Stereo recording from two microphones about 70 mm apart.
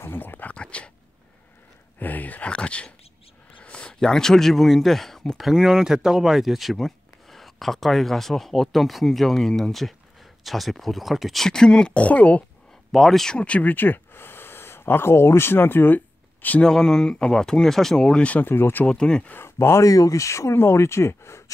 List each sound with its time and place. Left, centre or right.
0.0 s speech: left
2.0 s speech: left; by 5.4 s centre
5.4 s speech: centre
12.9 s speech: centre; by 16.0 s left
16.6 s speech: centre
18.5 s speech: left
18.9 s speech: centre
19.3 s speech: left